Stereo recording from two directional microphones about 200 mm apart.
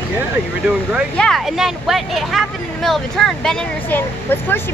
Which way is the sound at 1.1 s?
5° left (ahead or behind).